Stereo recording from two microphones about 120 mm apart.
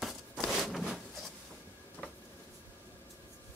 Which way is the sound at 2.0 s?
10° left (ahead or behind).